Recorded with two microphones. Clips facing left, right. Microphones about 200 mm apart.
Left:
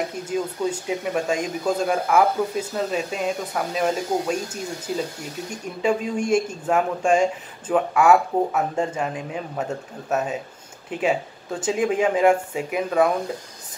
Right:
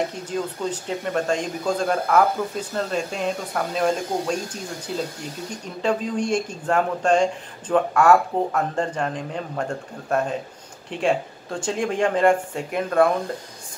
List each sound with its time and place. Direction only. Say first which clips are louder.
0.3 s speech: left 2 dB; 10° left (ahead or behind)